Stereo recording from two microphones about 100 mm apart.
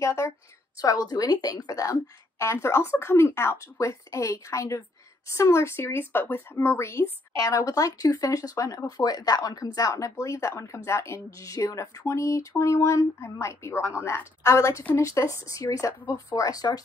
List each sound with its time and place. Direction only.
0.0 s speech: 30° left (ahead or behind)